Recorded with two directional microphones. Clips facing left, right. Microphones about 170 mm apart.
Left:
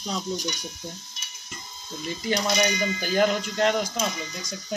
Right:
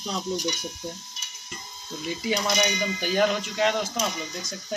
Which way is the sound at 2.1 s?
5° right (ahead or behind).